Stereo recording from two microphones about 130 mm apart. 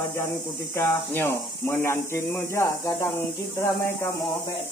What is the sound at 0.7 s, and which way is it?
Speech, 20° left (ahead or behind).